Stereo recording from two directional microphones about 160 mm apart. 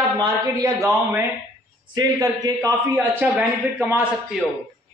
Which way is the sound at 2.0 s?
25° right (ahead or behind).